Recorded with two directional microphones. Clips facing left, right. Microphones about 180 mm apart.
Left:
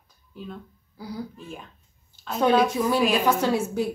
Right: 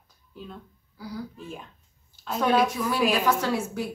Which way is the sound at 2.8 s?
25° left (ahead or behind).